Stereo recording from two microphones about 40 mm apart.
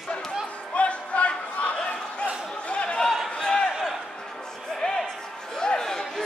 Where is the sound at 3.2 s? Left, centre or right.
Left.